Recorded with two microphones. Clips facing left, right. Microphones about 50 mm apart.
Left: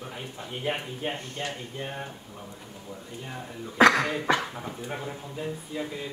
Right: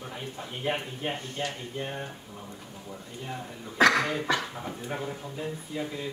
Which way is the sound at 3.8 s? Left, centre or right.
Left.